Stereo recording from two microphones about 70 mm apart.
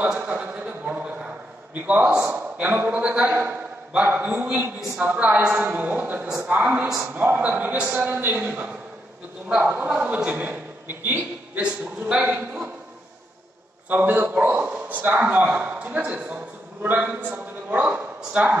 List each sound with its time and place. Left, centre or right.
0.2 s a man's voice: centre
2.3 s a man's voice: right
6.2 s a man's voice: centre
13.8 s a man's voice: right